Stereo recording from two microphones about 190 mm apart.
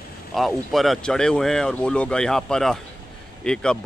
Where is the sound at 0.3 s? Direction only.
Centre (ahead or behind).